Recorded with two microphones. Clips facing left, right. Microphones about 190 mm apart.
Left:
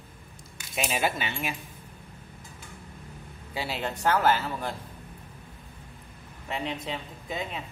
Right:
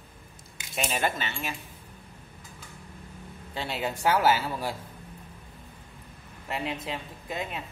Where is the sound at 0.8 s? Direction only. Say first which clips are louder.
Left 1 dB; 5° left (ahead or behind).